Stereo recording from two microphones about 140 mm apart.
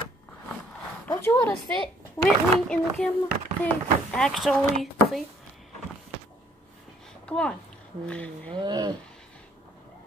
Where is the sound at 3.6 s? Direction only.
5° left (ahead or behind).